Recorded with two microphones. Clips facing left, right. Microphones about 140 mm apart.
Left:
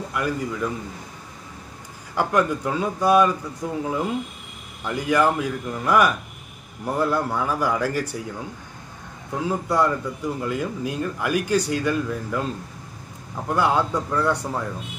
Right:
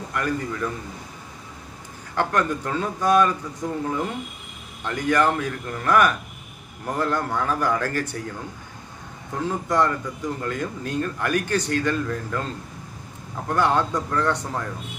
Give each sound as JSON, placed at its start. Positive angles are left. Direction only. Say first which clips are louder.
{"t": 0.1, "sound": "speech", "louder": "even", "side_deg": 10}
{"t": 2.1, "sound": "speech", "louder": "left 2 dB", "side_deg": 10}
{"t": 4.8, "sound": "speech", "louder": "left 1 dB", "side_deg": 10}
{"t": 9.4, "sound": "speech", "louder": "even", "side_deg": 10}
{"t": 13.5, "sound": "speech", "louder": "even", "side_deg": 10}